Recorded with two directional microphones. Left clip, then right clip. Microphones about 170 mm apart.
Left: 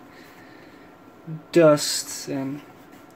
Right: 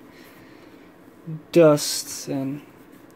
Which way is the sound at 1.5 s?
15° right (ahead or behind).